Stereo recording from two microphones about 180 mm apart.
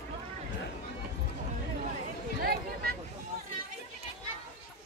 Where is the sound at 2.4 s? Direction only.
55° right (ahead or behind).